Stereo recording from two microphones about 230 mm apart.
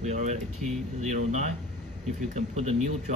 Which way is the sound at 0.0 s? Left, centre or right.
Right.